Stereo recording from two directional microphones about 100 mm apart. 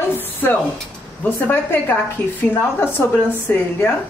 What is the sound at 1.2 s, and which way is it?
A woman's voice, 20° left (ahead or behind).